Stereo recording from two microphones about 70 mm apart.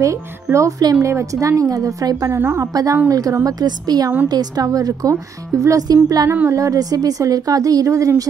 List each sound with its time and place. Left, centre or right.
0.0 s a woman's voice: right
2.4 s a woman's voice: right
2.7 s a woman's voice: right
3.4 s a woman's voice: right
4.6 s a woman's voice: right
6.5 s a woman's voice: right